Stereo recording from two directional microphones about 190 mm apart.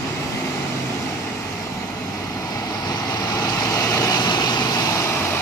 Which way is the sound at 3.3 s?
20° left (ahead or behind).